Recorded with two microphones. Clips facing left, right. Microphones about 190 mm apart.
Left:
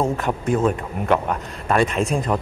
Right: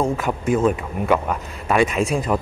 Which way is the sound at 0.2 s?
Centre (ahead or behind).